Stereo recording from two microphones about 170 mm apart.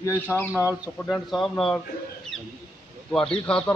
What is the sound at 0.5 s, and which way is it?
Speech, 10° right (ahead or behind).